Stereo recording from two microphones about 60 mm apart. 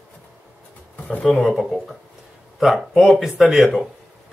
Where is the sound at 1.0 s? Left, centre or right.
Left.